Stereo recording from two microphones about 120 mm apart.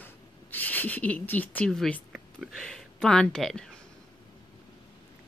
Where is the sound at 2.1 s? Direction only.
Centre (ahead or behind).